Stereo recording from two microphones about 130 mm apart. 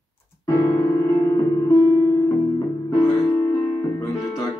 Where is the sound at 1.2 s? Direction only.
25° left (ahead or behind).